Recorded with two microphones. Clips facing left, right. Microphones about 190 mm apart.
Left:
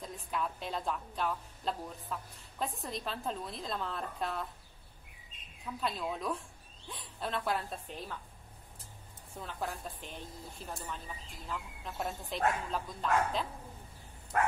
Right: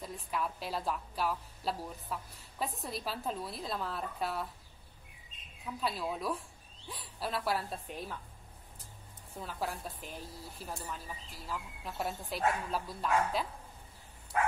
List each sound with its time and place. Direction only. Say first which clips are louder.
0.0 s a woman's voice: even; 5° right (ahead or behind)
5.8 s speech: even; 5° right (ahead or behind)
9.4 s speech: right 1 dB; centre (ahead or behind)
14.3 s a sound: left 1 dB; 55° left (ahead or behind)